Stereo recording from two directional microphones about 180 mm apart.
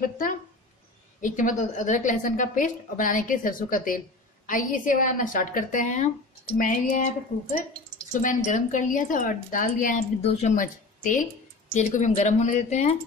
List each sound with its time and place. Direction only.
0.0 s a woman's voice: 50° left (ahead or behind)
8.1 s a woman's voice: 45° left (ahead or behind)